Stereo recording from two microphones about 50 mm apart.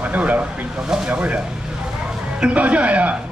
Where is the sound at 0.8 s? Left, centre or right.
Centre.